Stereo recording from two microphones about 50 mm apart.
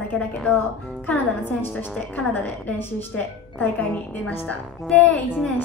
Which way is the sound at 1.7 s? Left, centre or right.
Left.